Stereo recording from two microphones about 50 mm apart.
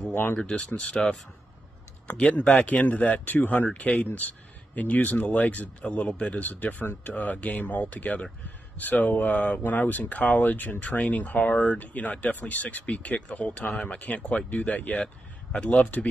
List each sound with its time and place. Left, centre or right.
0.1 s speech: left
0.4 s speech: centre
2.3 s speech: left